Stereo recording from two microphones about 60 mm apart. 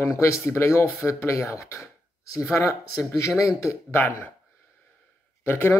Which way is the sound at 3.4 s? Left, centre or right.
Left.